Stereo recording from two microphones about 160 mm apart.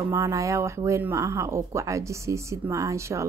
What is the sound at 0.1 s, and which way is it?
A woman's voice, 20° right (ahead or behind).